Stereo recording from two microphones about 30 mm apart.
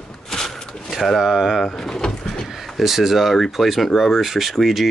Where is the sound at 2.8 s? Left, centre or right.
Centre.